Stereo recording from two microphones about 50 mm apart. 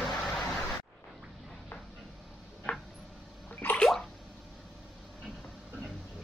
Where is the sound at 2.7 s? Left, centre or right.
Left.